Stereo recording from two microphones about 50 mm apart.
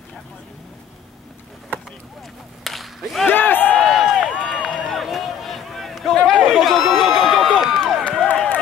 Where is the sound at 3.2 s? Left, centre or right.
Left.